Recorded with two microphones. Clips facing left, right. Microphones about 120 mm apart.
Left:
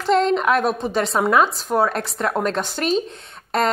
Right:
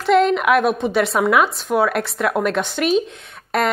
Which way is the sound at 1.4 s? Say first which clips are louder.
Right 1 dB; centre (ahead or behind).